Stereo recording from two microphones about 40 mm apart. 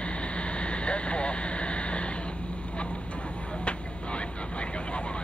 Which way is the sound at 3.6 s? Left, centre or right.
Left.